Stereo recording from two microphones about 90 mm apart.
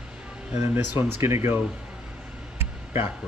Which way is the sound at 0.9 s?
25° right (ahead or behind).